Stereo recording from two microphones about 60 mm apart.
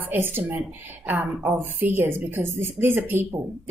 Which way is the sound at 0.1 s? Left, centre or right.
Right.